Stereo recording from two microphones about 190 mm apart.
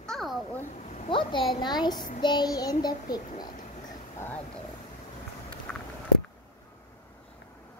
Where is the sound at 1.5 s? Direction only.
25° left (ahead or behind).